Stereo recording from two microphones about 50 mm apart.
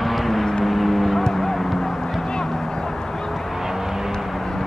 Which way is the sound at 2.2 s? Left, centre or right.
Centre.